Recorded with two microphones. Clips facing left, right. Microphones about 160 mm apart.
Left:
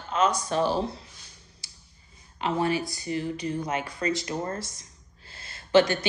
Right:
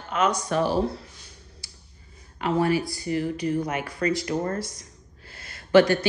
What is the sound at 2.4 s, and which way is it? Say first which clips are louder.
Speech: right 3 dB; 25° left (ahead or behind).